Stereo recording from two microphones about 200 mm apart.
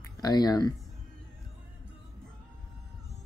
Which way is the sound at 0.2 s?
20° left (ahead or behind).